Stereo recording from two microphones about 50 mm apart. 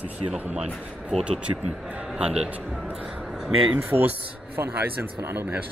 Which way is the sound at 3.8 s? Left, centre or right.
Right.